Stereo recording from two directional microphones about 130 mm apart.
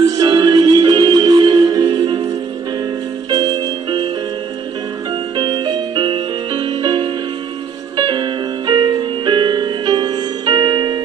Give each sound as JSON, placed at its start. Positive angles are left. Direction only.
{"t": 0.2, "sound": "music", "side_deg": -35}
{"t": 3.3, "sound": "music", "side_deg": -35}
{"t": 5.4, "sound": "music", "side_deg": -40}